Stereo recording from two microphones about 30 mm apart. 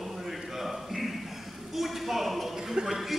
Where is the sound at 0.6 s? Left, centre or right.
Centre.